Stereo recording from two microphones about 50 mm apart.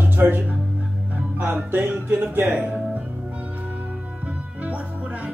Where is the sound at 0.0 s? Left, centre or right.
Right.